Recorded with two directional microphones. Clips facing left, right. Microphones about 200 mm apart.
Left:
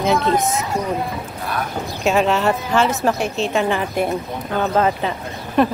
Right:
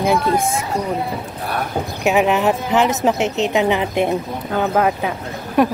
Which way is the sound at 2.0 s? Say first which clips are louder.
Right 1 dB; 15° right (ahead or behind).